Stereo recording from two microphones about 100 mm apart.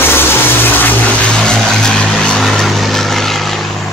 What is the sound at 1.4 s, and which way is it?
Vehicle, 5° left (ahead or behind).